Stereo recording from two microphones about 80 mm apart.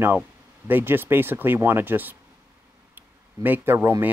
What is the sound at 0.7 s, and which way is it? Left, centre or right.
Speech, right.